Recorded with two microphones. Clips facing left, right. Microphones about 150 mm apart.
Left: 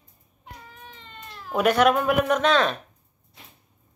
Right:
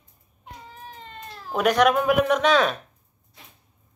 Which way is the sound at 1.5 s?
Centre (ahead or behind).